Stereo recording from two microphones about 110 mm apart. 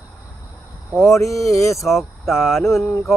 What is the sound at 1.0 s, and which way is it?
Speech, 25° left (ahead or behind).